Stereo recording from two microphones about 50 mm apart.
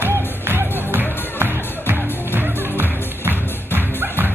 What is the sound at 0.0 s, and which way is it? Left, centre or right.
Music, right.